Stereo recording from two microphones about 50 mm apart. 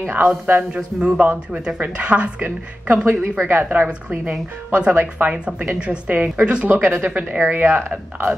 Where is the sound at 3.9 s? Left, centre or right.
Right.